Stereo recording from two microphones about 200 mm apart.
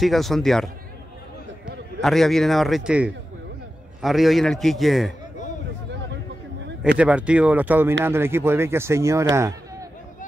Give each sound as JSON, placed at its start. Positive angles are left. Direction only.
{"t": 0.0, "sound": "a man's voice", "side_deg": 0}
{"t": 2.0, "sound": "a man's voice", "side_deg": 0}
{"t": 7.0, "sound": "speech", "side_deg": -5}
{"t": 9.3, "sound": "a sound", "side_deg": -15}